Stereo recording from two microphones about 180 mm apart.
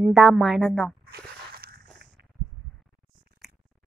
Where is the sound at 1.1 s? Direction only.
60° right (ahead or behind).